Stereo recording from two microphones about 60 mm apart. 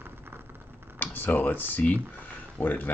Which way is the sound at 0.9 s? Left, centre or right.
Left.